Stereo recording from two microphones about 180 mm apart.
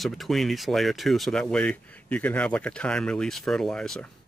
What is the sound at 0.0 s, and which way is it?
Speech, centre (ahead or behind).